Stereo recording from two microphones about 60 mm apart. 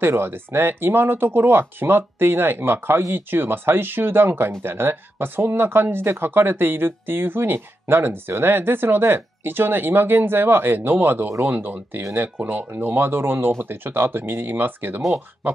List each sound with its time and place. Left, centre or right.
0.0 s speech: right